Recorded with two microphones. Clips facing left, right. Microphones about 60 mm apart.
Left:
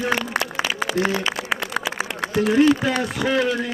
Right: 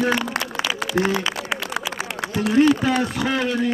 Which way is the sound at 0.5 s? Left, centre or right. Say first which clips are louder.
Even; left.